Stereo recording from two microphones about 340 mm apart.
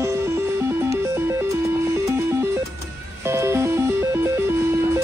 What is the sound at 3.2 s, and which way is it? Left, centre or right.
Music, centre.